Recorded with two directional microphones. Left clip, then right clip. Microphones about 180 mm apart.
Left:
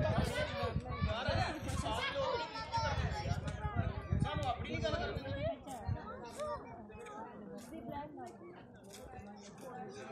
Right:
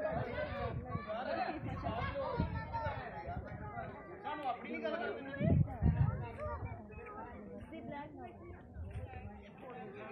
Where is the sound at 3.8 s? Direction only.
50° left (ahead or behind).